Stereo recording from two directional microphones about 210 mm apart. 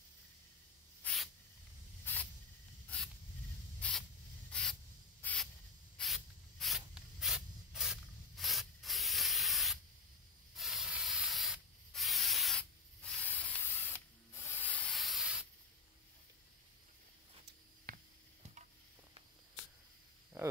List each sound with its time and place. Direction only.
1.0 s spray: centre (ahead or behind)
2.1 s snake: 10° left (ahead or behind)
3.8 s spray: 5° left (ahead or behind)
17.8 s a sound: 40° right (ahead or behind)